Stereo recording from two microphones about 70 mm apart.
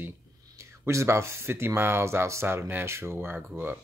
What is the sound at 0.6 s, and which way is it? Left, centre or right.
Speech, right.